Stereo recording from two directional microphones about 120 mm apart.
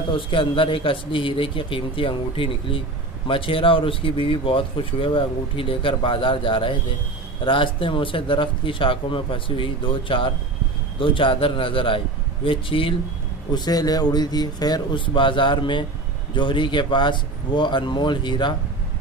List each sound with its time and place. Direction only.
0.1 s speech: 45° left (ahead or behind)
13.5 s speech: 35° left (ahead or behind)